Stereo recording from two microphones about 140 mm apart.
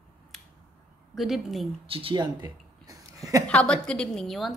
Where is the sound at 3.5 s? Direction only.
5° left (ahead or behind).